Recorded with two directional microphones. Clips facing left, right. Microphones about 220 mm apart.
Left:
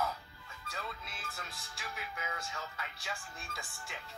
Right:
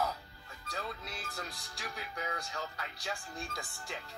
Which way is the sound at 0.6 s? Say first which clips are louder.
Right 3 dB; 40° right (ahead or behind).